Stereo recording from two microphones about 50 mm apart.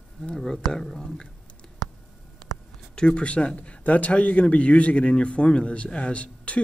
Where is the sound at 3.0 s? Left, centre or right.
Centre.